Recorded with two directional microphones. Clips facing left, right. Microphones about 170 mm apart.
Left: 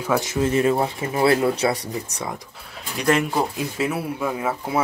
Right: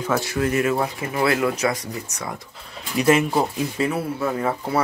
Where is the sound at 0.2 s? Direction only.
20° left (ahead or behind).